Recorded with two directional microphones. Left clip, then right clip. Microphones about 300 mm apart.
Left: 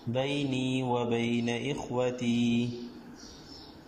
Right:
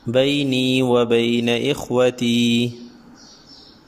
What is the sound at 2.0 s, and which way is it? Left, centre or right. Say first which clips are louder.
Mantra: right 12 dB; right.